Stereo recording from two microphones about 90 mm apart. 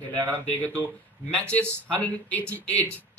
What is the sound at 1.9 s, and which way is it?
Speech, 15° left (ahead or behind).